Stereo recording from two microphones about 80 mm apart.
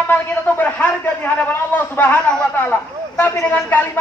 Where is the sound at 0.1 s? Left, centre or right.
Left.